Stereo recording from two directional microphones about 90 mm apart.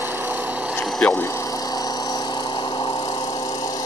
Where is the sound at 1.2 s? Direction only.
30° left (ahead or behind); by 2.7 s 60° left (ahead or behind).